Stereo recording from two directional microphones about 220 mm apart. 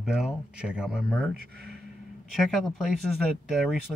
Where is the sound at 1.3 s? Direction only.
45° right (ahead or behind).